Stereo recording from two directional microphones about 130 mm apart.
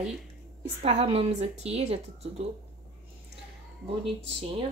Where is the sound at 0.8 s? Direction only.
50° right (ahead or behind).